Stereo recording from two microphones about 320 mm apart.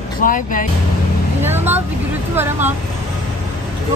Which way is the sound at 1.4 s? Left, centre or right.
Centre.